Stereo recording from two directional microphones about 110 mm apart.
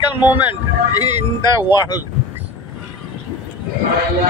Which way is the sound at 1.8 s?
40° left (ahead or behind).